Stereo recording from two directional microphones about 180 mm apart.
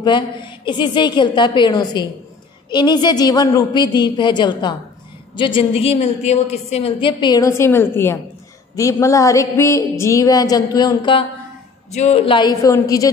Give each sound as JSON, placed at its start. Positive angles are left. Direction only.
{"t": 0.0, "sound": "a woman's voice", "side_deg": 25}
{"t": 11.9, "sound": "a woman's voice", "side_deg": 35}